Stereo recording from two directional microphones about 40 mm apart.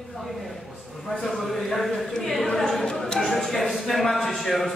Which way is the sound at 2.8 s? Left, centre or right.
Centre.